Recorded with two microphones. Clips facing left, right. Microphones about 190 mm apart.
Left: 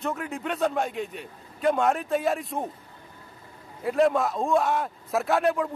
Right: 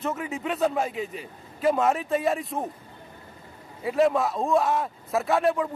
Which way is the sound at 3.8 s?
Centre (ahead or behind).